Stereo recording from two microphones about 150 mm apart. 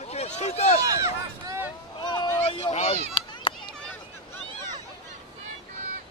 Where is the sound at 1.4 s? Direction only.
20° right (ahead or behind).